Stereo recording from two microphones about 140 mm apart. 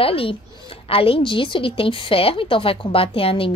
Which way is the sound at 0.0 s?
40° left (ahead or behind).